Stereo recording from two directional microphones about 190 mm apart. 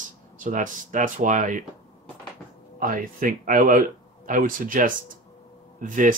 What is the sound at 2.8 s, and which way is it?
Speech, 45° right (ahead or behind).